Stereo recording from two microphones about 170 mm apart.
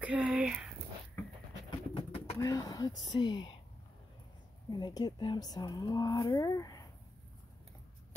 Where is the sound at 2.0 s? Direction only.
35° left (ahead or behind).